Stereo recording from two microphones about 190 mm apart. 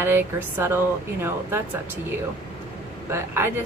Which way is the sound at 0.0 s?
10° right (ahead or behind).